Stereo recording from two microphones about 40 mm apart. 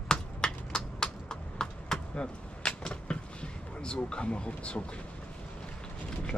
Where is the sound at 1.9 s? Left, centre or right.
Left.